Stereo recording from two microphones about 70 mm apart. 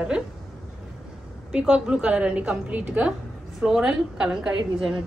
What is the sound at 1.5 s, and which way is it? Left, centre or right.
A woman's voice, centre.